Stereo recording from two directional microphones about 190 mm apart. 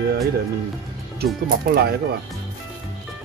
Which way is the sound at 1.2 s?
55° right (ahead or behind).